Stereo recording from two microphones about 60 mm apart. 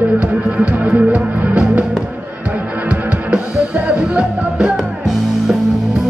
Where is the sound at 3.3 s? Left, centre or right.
Centre.